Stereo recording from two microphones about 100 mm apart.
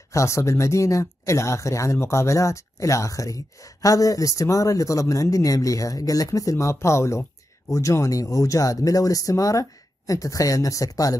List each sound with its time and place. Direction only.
0.1 s speech: 30° left (ahead or behind)